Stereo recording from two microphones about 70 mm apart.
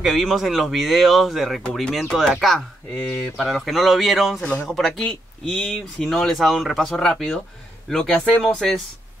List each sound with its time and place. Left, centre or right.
0.0 s speech: centre
1.9 s speech: centre
3.4 s speech: centre
5.0 s speech: centre